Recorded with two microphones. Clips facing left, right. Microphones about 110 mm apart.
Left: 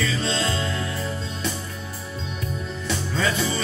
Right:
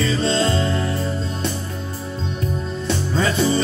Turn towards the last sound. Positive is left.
turn(degrees=-35)  # may be behind; listen again after turning